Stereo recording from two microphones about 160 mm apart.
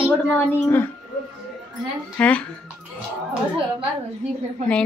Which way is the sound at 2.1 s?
10° left (ahead or behind).